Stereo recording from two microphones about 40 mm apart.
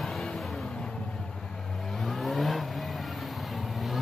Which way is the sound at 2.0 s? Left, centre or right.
Centre.